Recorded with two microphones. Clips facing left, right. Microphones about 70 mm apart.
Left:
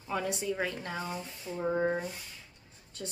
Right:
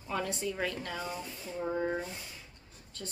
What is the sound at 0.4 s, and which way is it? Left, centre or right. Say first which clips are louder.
Speech: left 1 dB; centre.